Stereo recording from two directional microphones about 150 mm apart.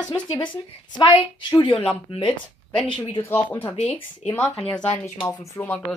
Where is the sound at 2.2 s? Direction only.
5° left (ahead or behind).